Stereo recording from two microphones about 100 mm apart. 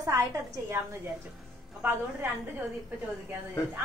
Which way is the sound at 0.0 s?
30° right (ahead or behind).